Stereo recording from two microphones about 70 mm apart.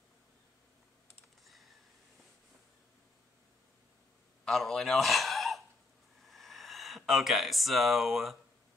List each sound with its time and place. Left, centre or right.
1.4 s computer keyboard: centre
4.5 s a man's voice: centre
6.2 s a sound: centre